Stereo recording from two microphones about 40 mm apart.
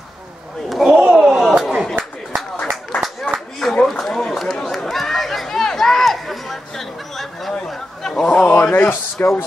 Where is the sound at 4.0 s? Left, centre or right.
Centre.